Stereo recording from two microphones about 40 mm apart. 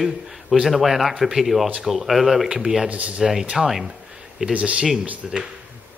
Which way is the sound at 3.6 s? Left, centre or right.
Centre.